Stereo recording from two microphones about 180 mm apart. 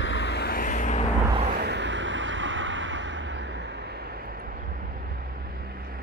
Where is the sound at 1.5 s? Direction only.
70° right (ahead or behind).